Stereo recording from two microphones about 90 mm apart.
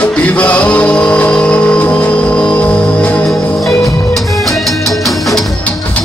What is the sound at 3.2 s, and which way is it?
Music, centre (ahead or behind).